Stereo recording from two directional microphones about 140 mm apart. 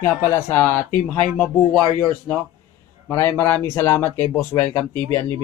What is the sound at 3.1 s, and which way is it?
Speech, 20° left (ahead or behind).